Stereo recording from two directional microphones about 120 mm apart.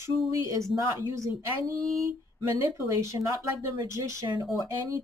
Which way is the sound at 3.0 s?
25° right (ahead or behind).